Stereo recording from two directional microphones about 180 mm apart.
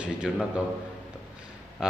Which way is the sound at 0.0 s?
5° right (ahead or behind).